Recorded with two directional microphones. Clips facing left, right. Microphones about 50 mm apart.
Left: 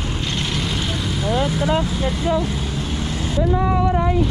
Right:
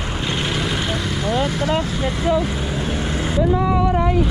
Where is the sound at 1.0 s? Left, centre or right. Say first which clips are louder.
Left 2 dB; centre.